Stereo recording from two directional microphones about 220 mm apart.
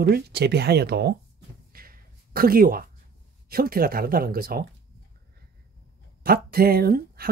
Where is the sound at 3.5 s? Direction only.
40° right (ahead or behind).